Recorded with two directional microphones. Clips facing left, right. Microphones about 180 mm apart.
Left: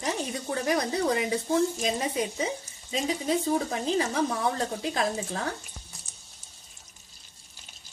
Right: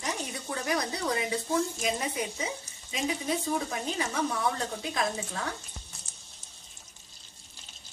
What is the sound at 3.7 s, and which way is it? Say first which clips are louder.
A woman's voice: left 5 dB; 30° left (ahead or behind).